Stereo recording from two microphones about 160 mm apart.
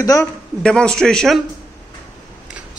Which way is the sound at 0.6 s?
5° left (ahead or behind).